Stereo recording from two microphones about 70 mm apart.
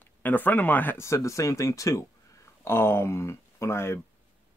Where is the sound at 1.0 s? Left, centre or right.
Left.